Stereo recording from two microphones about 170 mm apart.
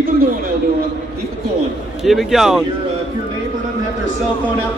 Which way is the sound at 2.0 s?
Centre (ahead or behind).